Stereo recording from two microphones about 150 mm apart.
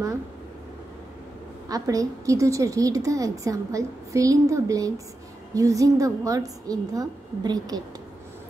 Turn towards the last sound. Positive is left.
turn(degrees=-25)  # may be behind; listen again after turning